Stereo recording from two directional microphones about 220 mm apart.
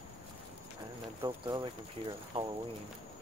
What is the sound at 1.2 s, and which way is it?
Speech, 20° right (ahead or behind).